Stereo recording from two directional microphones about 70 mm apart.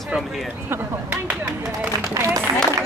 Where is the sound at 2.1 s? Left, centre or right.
Right.